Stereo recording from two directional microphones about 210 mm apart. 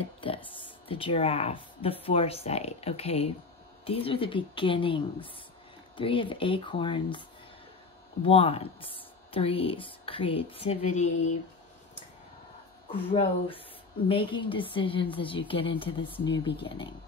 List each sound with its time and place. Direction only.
0.2 s a sound: 25° left (ahead or behind)
0.6 s speech: 25° left (ahead or behind)
8.3 s speech: 25° left (ahead or behind)
12.9 s speech: 25° left (ahead or behind)